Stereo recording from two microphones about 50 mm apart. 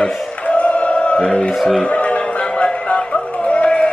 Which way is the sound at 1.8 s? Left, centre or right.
Left.